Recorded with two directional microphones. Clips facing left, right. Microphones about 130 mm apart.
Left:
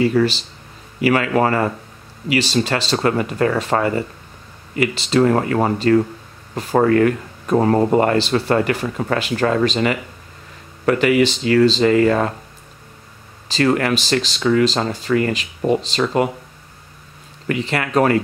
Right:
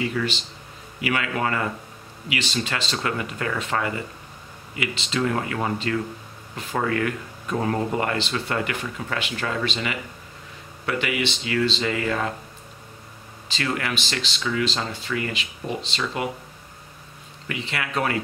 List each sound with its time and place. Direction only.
0.0 s speech: 35° left (ahead or behind)
13.5 s speech: 40° left (ahead or behind)
17.5 s speech: 45° left (ahead or behind)